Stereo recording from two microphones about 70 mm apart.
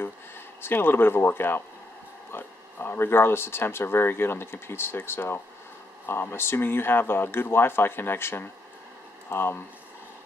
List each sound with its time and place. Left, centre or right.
0.6 s speech: left